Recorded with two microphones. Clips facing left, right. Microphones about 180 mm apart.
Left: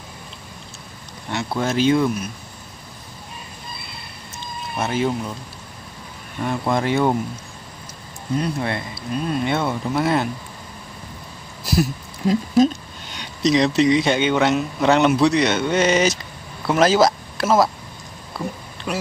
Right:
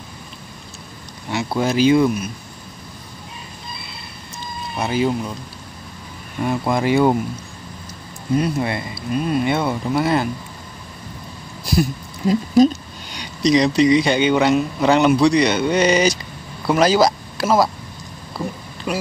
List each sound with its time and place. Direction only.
1.3 s speech: centre (ahead or behind)
4.7 s speech: centre (ahead or behind)
6.4 s speech: 5° right (ahead or behind)
8.4 s speech: 5° right (ahead or behind)
11.6 s speech: 5° left (ahead or behind)
18.9 s speech: centre (ahead or behind)